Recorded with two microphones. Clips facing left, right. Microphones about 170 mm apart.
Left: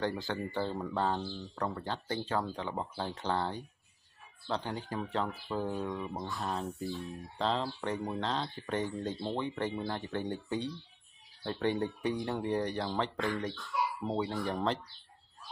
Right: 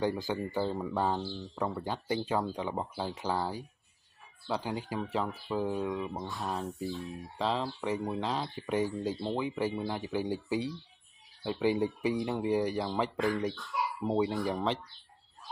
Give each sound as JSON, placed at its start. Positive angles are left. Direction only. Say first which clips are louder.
{"t": 0.4, "sound": "speech", "louder": "right 2 dB", "side_deg": -5}
{"t": 1.7, "sound": "speech", "louder": "right 3 dB", "side_deg": -10}
{"t": 14.0, "sound": "speech", "louder": "right 9 dB", "side_deg": -20}
{"t": 14.4, "sound": "speech", "louder": "right 1 dB", "side_deg": 0}